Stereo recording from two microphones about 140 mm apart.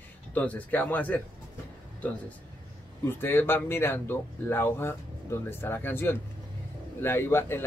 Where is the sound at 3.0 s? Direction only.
15° left (ahead or behind).